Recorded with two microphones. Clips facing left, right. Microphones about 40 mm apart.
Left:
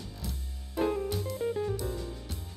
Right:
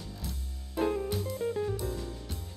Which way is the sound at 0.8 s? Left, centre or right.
Centre.